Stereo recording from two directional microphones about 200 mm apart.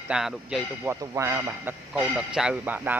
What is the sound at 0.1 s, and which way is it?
A man's voice, 5° right (ahead or behind).